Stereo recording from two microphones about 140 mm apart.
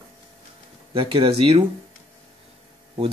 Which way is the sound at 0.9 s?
40° right (ahead or behind).